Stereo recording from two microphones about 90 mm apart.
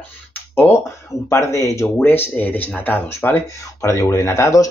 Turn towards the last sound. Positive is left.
turn(degrees=35)  # may be behind; listen again after turning